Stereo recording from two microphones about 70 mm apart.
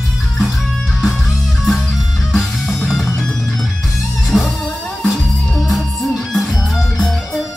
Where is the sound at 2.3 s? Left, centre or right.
Centre.